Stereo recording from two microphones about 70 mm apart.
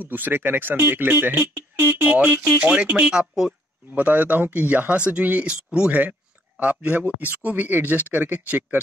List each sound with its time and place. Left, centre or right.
0.1 s speech: right; by 3.5 s centre
3.9 s speech: right